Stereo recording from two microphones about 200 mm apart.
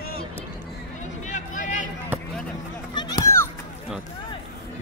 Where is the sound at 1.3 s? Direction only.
40° left (ahead or behind).